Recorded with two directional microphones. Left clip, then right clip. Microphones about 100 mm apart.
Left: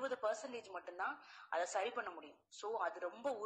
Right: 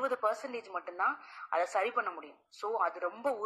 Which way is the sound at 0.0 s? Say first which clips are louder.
Right 8 dB; 15° left (ahead or behind).